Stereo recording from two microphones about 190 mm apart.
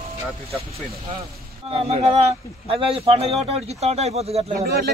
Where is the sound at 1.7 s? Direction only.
30° right (ahead or behind).